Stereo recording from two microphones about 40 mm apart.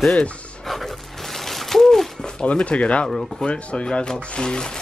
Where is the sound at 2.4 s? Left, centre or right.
Left.